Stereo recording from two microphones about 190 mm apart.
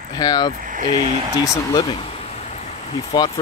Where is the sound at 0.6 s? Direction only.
45° right (ahead or behind).